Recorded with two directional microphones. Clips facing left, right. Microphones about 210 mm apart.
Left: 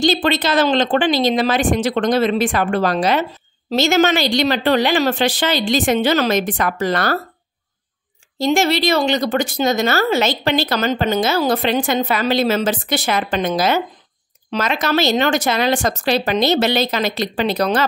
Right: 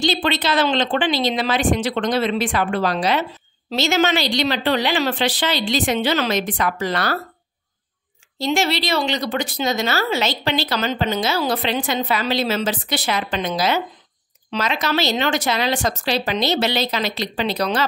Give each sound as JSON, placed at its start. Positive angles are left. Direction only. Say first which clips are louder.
{"t": 0.0, "sound": "speech", "louder": "left 4 dB", "side_deg": 45}
{"t": 8.4, "sound": "speech", "louder": "left 4 dB", "side_deg": 45}